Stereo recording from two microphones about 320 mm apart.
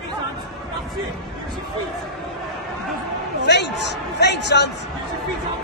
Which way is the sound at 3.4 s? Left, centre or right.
Left.